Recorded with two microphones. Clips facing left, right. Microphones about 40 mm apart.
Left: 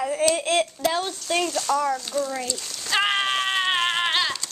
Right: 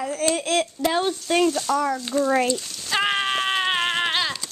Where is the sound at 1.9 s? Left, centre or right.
Right.